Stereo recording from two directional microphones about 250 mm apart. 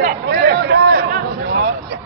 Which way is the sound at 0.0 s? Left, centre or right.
Right.